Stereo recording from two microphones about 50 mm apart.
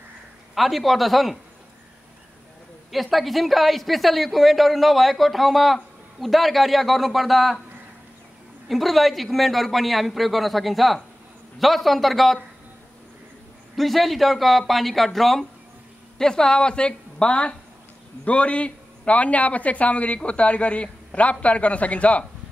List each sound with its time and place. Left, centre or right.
0.6 s a woman's voice: centre
2.9 s a woman's voice: centre
8.6 s a woman's voice: centre
13.7 s a woman's voice: centre; by 22.2 s left